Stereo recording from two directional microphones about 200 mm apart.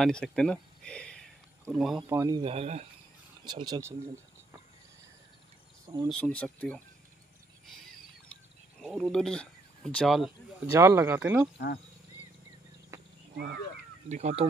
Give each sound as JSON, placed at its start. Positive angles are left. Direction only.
{"t": 0.0, "sound": "a sound", "side_deg": 5}
{"t": 2.0, "sound": "speech", "side_deg": -15}
{"t": 3.4, "sound": "speech", "side_deg": -20}
{"t": 6.0, "sound": "speech", "side_deg": 5}
{"t": 8.7, "sound": "speech", "side_deg": 0}
{"t": 10.8, "sound": "speech", "side_deg": -15}
{"t": 11.5, "sound": "speech", "side_deg": 55}
{"t": 12.9, "sound": "a sound", "side_deg": -15}
{"t": 13.3, "sound": "speech", "side_deg": -55}
{"t": 14.0, "sound": "speech", "side_deg": -35}